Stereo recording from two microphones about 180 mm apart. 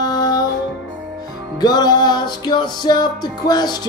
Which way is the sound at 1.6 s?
20° left (ahead or behind).